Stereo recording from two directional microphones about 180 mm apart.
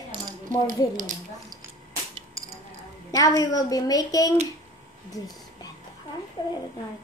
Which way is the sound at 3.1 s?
20° left (ahead or behind).